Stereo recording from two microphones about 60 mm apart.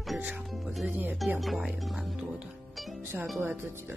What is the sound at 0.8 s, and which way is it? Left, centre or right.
Speech, right.